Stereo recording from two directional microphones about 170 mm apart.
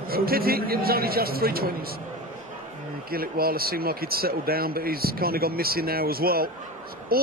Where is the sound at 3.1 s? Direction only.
60° right (ahead or behind).